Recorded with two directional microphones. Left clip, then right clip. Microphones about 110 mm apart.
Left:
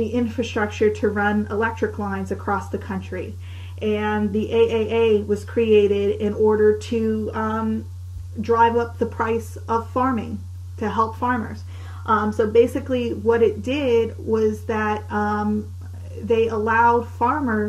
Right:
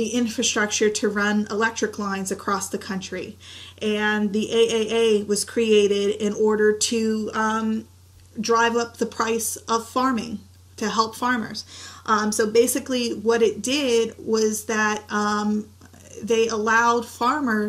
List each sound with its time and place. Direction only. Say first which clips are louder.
0.0 s speech: even; 25° right (ahead or behind)